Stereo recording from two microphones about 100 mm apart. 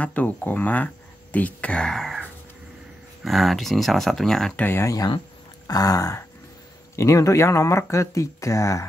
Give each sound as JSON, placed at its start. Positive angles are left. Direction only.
{"t": 0.0, "sound": "speech", "side_deg": 15}
{"t": 3.3, "sound": "speech", "side_deg": 0}
{"t": 4.6, "sound": "speech", "side_deg": 25}
{"t": 5.7, "sound": "speech", "side_deg": 35}